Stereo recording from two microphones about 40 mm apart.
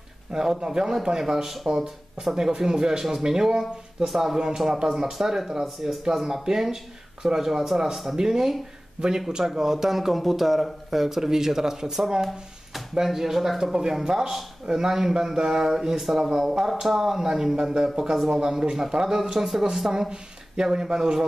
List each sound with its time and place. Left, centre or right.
0.3 s speech: centre
9.0 s speech: right
9.3 s speech: centre
19.9 s speech: centre